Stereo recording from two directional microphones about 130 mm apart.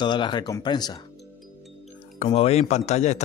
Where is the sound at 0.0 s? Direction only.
35° left (ahead or behind).